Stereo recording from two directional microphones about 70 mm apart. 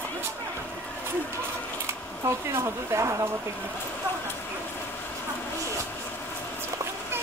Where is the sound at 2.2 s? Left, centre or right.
Right.